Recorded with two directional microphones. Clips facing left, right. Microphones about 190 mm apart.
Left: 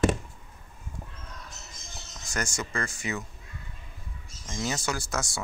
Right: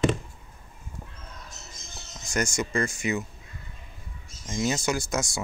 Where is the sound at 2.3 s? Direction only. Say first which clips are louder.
Right 6 dB; 20° right (ahead or behind).